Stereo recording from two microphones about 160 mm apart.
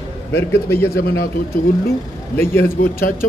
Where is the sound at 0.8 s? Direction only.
75° left (ahead or behind).